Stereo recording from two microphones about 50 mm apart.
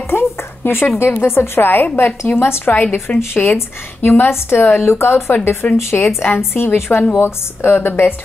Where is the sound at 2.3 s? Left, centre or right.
Left.